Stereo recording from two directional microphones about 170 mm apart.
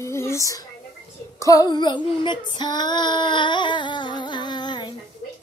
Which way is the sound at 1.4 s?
25° left (ahead or behind).